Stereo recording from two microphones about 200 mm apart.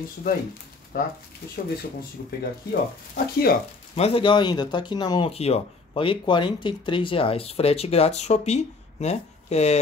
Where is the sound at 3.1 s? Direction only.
50° left (ahead or behind).